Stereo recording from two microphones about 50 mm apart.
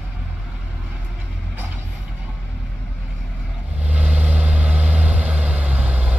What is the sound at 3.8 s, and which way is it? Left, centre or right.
Vehicle, right.